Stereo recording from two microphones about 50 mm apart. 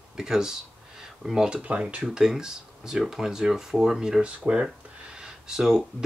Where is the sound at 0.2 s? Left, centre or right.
Centre.